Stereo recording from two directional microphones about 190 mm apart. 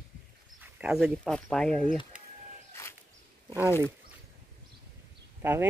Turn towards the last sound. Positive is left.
turn(degrees=-10)  # may be behind; listen again after turning